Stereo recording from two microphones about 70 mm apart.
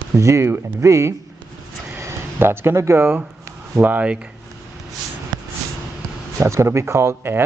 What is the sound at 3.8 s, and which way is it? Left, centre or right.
Speech, right.